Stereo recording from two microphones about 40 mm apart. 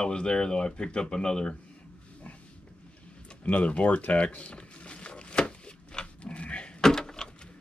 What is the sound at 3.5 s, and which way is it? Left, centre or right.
Speech, left.